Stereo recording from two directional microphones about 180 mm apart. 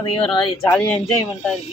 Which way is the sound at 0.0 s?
30° left (ahead or behind).